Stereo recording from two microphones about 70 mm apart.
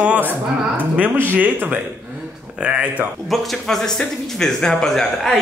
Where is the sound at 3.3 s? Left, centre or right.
Centre.